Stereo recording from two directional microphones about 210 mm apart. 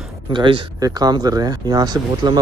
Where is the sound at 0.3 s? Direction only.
20° right (ahead or behind).